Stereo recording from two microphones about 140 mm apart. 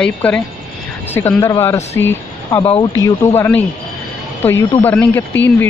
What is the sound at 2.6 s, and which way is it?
Speech, 40° left (ahead or behind).